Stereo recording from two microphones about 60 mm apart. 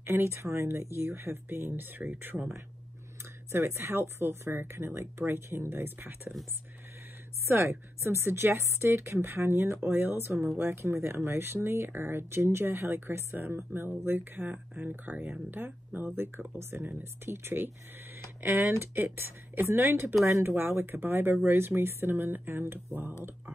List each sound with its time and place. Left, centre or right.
0.0 s speech: right
3.5 s speech: right
7.4 s speech: right
14.5 s speech: right